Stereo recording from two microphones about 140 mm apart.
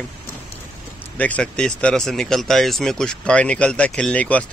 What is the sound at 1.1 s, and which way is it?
Speech, 10° left (ahead or behind).